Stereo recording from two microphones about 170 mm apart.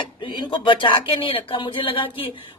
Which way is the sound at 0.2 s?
30° left (ahead or behind).